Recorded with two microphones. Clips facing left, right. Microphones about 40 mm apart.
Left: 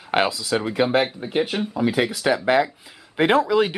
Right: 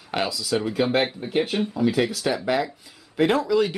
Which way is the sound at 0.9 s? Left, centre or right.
Centre.